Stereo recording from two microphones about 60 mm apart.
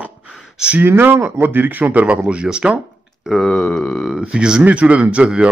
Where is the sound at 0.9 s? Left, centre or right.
Right.